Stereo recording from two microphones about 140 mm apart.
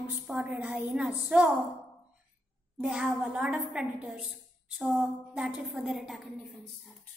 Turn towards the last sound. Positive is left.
turn(degrees=0)  # may be behind; listen again after turning